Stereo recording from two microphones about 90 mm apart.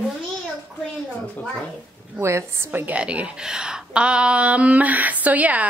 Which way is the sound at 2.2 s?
30° right (ahead or behind).